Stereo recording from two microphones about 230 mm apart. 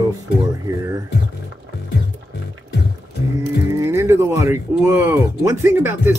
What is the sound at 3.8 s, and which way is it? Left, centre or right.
Speech, centre.